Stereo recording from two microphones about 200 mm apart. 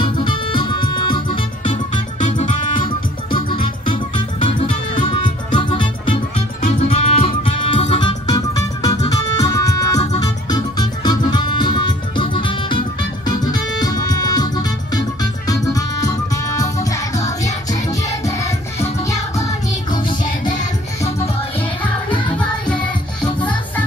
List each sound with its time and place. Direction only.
0.0 s music: 25° left (ahead or behind)
1.7 s music: 40° left (ahead or behind)
2.7 s music: 25° left (ahead or behind)
18.8 s music: 15° left (ahead or behind)